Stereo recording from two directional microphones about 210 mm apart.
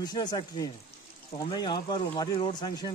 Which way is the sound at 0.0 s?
20° left (ahead or behind).